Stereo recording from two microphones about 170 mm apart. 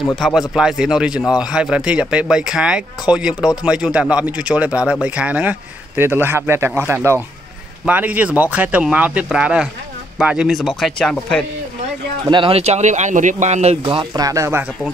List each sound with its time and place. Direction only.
0.1 s speech: centre (ahead or behind)
12.3 s speech: 30° right (ahead or behind)